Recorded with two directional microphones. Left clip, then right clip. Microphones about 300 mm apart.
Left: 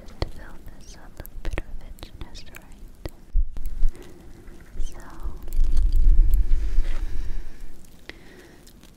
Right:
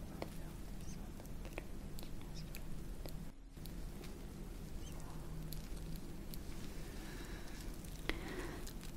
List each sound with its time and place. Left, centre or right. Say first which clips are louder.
0.2 s whispering: left 15 dB; left
1.4 s whispering: left 15 dB; left
3.0 s hum: left 15 dB; left
8.1 s a sound: left 1 dB; centre